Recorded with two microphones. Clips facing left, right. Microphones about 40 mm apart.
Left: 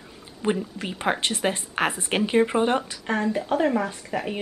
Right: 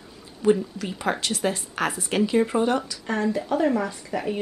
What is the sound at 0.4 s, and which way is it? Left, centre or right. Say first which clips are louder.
Speech: right 4 dB; left.